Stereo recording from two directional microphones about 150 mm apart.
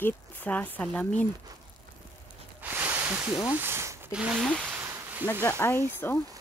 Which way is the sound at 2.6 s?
15° right (ahead or behind).